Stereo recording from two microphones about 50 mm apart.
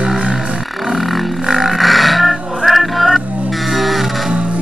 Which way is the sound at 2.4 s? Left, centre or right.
Centre.